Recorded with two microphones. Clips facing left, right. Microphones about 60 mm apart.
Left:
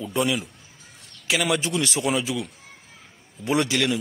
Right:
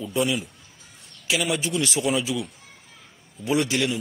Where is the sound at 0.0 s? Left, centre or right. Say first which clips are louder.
Even; left.